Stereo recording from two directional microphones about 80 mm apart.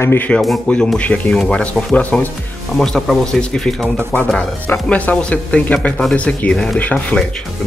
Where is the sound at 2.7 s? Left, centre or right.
Centre.